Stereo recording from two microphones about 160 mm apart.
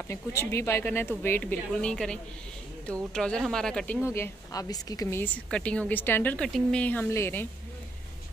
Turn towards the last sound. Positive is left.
turn(degrees=15)  # may be behind; listen again after turning